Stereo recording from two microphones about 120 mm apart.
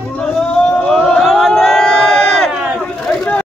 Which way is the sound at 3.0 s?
10° left (ahead or behind).